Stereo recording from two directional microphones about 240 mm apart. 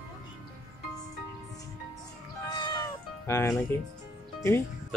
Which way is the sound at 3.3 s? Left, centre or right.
Centre.